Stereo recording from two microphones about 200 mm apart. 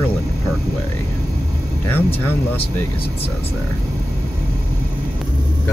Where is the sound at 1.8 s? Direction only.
10° left (ahead or behind).